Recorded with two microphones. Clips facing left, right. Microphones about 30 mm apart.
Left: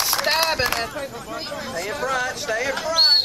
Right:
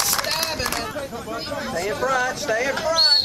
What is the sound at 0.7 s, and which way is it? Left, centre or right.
Speech, centre.